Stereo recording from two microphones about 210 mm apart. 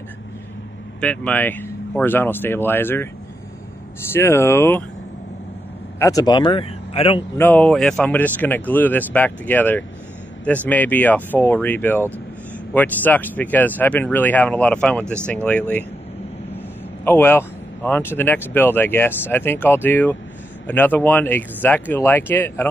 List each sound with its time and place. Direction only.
1.0 s speech: 5° left (ahead or behind)
4.1 s speech: 10° left (ahead or behind)
5.9 s speech: 15° left (ahead or behind)
7.3 s speech: 10° left (ahead or behind)
17.0 s speech: 10° left (ahead or behind)